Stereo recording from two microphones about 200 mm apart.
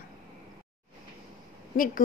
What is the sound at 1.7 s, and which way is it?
Speech, 45° left (ahead or behind).